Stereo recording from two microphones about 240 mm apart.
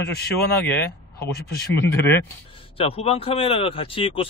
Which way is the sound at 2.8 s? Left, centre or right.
Left.